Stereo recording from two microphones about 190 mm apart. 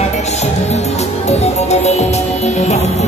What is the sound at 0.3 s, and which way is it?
Music, 35° left (ahead or behind).